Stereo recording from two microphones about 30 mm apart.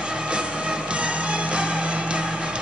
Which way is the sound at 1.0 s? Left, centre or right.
Right.